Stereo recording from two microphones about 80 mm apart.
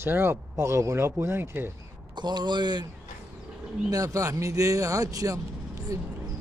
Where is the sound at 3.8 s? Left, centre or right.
Right.